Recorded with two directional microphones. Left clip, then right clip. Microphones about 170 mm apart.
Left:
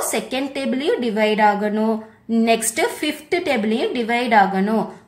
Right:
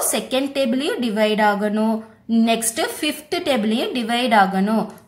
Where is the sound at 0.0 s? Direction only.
Centre (ahead or behind).